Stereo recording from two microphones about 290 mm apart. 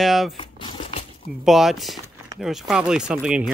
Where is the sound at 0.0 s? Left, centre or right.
Centre.